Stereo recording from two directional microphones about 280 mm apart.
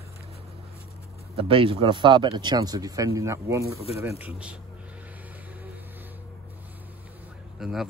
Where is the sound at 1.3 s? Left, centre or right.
Centre.